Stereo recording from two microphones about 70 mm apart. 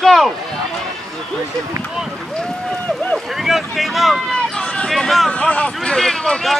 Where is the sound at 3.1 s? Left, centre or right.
Centre.